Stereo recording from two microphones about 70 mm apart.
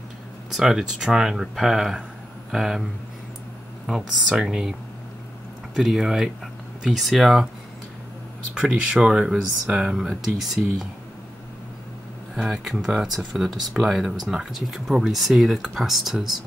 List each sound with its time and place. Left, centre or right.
0.5 s speech: centre
3.8 s speech: centre
5.8 s speech: centre
9.0 s speech: centre
12.4 s speech: centre